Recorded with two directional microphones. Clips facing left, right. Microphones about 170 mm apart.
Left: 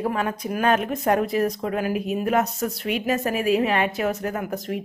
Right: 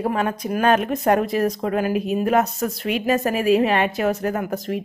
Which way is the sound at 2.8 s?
85° right.